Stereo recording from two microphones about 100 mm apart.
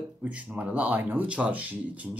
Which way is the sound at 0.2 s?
15° right (ahead or behind).